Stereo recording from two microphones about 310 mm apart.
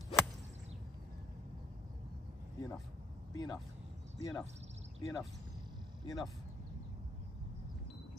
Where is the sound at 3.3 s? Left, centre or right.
Centre.